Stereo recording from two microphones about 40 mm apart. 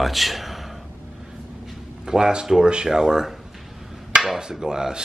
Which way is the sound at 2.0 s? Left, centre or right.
Centre.